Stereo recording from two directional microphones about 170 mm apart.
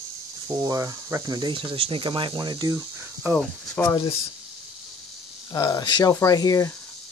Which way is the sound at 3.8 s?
20° left (ahead or behind).